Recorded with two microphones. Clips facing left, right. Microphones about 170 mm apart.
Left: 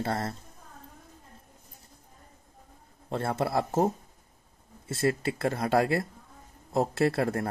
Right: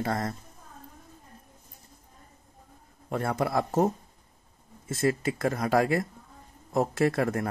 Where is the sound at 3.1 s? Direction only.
25° left (ahead or behind).